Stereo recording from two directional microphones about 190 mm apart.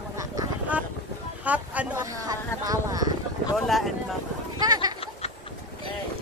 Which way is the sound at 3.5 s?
Centre (ahead or behind).